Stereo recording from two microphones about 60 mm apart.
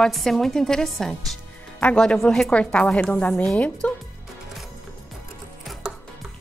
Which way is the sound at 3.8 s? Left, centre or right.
Left.